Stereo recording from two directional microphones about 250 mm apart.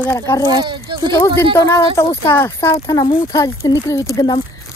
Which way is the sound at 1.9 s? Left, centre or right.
Centre.